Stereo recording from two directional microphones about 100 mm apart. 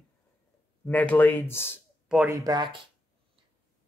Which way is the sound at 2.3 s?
35° right (ahead or behind).